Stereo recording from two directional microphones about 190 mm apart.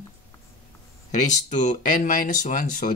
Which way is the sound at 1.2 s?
40° left (ahead or behind).